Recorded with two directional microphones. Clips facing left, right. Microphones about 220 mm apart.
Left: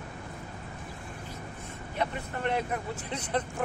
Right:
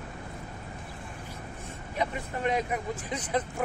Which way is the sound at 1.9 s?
10° right (ahead or behind).